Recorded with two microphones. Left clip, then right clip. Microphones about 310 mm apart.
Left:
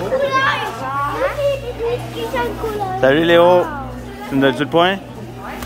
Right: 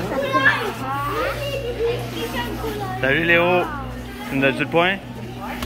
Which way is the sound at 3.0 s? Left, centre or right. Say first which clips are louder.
Left 6 dB; centre.